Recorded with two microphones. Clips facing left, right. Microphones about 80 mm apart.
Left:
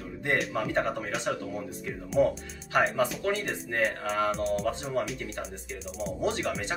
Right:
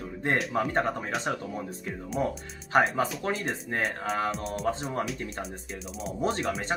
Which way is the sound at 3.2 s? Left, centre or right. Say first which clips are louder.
Left 1 dB; right.